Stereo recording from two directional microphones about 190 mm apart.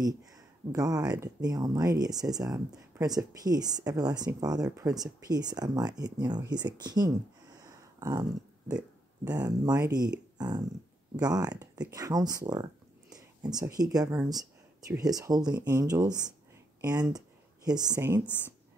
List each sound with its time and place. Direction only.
0.0 s speech: 20° right (ahead or behind)
7.6 s a sound: 20° right (ahead or behind)
9.2 s speech: 20° right (ahead or behind)